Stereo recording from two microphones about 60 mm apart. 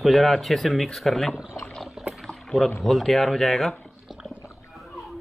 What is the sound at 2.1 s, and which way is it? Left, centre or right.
Rowboat, centre.